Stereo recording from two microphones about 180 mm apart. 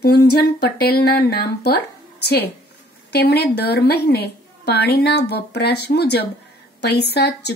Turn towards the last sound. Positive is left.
turn(degrees=65)  # may be behind; listen again after turning